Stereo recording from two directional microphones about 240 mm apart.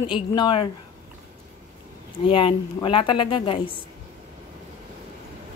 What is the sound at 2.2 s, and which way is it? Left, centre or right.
A woman's voice, left.